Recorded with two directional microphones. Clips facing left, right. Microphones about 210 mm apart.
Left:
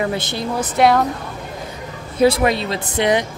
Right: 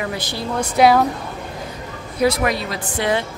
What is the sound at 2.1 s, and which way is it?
Speech, 30° left (ahead or behind).